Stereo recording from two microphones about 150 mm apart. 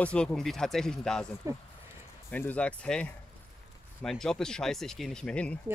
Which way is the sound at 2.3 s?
10° left (ahead or behind).